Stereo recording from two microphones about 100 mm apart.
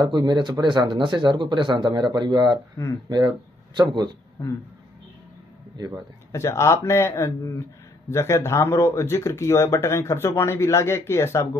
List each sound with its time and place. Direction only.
0.0 s speech: 45° right (ahead or behind)
3.7 s speech: 50° right (ahead or behind)
6.3 s speech: 30° left (ahead or behind)